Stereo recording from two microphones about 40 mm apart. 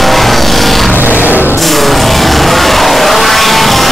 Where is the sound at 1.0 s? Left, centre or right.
Right.